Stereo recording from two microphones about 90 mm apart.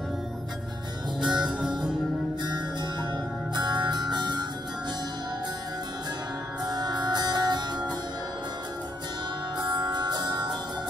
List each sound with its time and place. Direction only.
1.2 s music: 5° right (ahead or behind)
2.4 s music: 55° right (ahead or behind)
6.6 s music: 50° right (ahead or behind)
9.6 s music: 55° right (ahead or behind)